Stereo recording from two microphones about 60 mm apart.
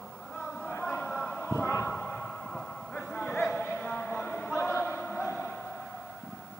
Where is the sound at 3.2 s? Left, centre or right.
Left.